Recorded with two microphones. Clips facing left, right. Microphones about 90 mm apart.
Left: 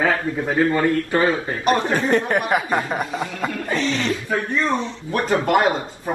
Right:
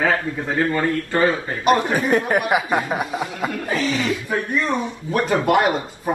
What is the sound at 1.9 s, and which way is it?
A man's voice, 10° right (ahead or behind).